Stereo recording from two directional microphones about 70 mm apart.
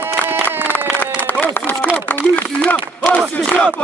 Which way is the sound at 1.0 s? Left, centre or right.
Left.